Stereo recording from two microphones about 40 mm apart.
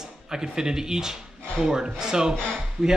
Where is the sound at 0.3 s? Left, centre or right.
Centre.